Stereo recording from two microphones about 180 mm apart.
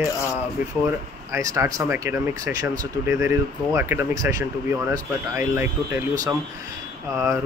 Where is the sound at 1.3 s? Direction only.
20° right (ahead or behind).